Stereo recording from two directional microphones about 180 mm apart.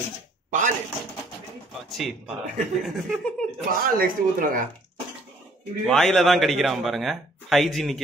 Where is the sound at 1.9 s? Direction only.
Centre (ahead or behind).